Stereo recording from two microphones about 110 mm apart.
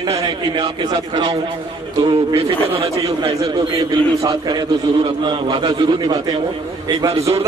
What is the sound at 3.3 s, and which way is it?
A man's voice, 55° right (ahead or behind).